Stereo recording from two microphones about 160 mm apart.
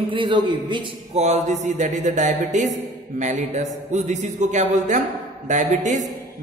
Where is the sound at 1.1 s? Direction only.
45° right (ahead or behind).